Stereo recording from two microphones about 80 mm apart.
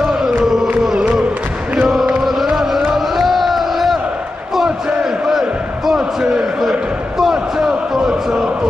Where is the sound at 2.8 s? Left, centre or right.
Centre.